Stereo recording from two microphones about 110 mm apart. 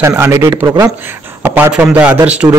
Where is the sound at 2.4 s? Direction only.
30° right (ahead or behind).